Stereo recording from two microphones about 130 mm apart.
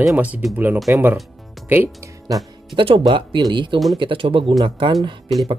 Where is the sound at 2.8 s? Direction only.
40° right (ahead or behind).